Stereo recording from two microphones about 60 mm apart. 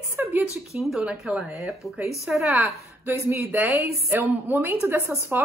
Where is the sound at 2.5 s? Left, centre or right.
Right.